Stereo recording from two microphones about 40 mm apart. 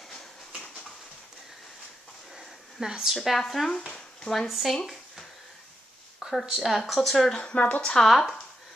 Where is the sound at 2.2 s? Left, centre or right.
Centre.